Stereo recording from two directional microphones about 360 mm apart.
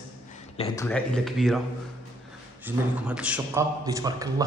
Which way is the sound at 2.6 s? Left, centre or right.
Centre.